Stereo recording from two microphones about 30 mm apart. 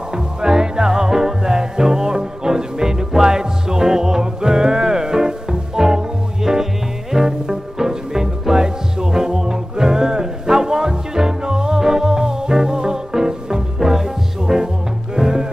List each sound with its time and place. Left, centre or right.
0.1 s music: right